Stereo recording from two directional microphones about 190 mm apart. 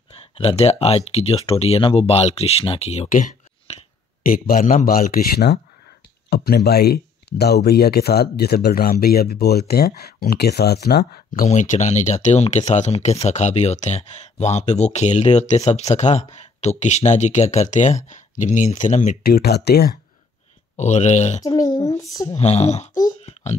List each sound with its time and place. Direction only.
0.1 s speech: 30° left (ahead or behind)
19.2 s speech: 55° left (ahead or behind)
20.7 s speech: 40° left (ahead or behind)
21.4 s a child's voice: 20° left (ahead or behind)
22.3 s speech: 35° left (ahead or behind)